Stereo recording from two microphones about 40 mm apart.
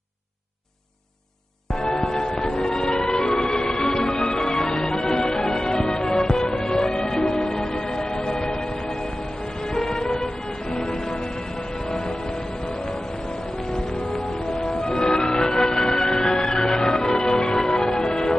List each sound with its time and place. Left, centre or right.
1.8 s music: centre
9.7 s music: centre
14.6 s music: centre